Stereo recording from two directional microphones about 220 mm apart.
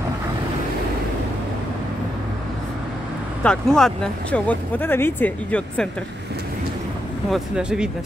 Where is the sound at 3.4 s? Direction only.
5° left (ahead or behind).